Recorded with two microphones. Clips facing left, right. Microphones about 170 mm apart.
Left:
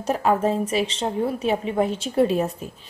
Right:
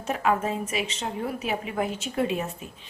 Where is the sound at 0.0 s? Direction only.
35° left (ahead or behind).